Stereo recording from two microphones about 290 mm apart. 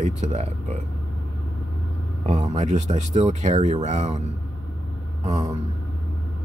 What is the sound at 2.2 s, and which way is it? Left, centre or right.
Speech, right.